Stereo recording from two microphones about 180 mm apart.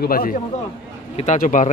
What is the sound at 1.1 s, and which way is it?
Speech, 40° left (ahead or behind).